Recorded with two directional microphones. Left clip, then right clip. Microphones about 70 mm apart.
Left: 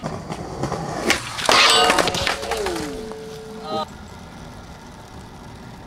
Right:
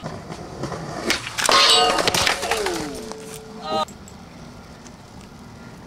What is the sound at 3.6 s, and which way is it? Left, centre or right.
Music, right.